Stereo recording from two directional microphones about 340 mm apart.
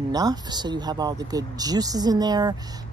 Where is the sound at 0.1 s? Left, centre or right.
Centre.